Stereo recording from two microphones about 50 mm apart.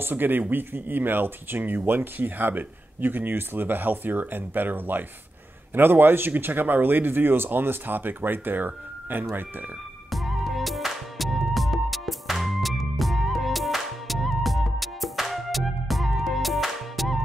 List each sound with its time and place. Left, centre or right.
0.0 s speech: right
10.1 s music: centre